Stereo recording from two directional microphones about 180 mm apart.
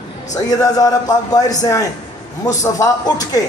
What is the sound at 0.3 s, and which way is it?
A man's voice, 20° left (ahead or behind).